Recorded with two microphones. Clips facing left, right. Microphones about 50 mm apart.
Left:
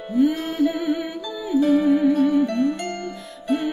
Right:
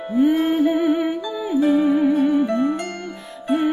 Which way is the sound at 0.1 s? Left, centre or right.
Right.